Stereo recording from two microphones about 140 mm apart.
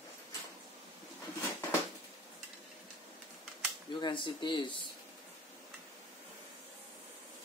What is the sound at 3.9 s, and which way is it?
Speech, 35° left (ahead or behind).